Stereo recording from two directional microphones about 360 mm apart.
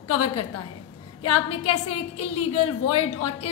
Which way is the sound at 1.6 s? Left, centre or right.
Left.